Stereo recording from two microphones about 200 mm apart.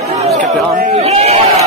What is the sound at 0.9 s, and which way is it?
Speech, 30° right (ahead or behind).